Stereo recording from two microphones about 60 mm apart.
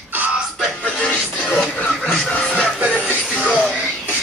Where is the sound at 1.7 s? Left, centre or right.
Left.